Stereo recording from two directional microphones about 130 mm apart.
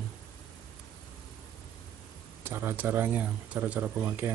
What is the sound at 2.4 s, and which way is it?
Speech, 15° right (ahead or behind).